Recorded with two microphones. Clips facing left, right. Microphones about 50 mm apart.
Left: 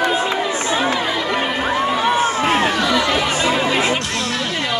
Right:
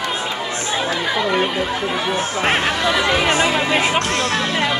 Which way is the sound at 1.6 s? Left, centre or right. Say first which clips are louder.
Left 3 dB; left.